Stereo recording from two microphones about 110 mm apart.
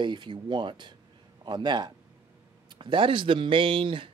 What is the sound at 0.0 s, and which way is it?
A man's voice, 45° right (ahead or behind).